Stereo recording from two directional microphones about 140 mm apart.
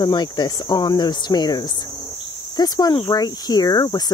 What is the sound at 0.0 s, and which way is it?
Speech, 30° left (ahead or behind).